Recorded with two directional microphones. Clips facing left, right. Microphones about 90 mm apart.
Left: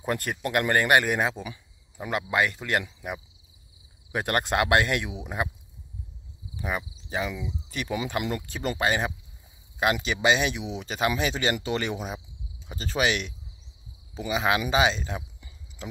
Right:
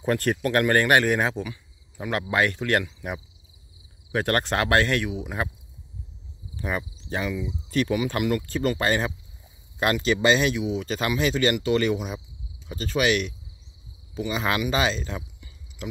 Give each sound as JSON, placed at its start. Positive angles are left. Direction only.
{"t": 0.0, "sound": "speech", "side_deg": 10}
{"t": 4.1, "sound": "speech", "side_deg": 15}
{"t": 6.5, "sound": "cricket", "side_deg": 10}
{"t": 7.9, "sound": "speech", "side_deg": 25}